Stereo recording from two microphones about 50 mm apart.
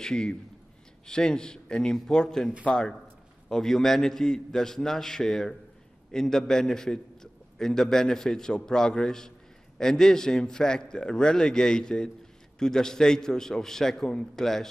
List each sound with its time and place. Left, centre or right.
0.0 s a man's voice: centre